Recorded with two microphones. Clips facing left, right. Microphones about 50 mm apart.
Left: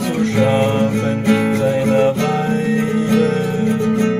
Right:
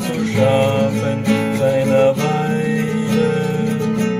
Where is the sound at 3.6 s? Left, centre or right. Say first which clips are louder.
Left 2 dB; left.